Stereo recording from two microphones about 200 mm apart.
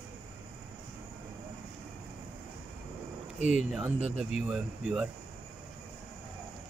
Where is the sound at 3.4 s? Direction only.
35° left (ahead or behind).